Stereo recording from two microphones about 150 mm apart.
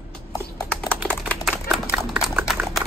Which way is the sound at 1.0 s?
10° left (ahead or behind).